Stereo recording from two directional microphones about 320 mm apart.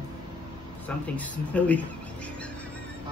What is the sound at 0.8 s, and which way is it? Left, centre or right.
Speech, centre.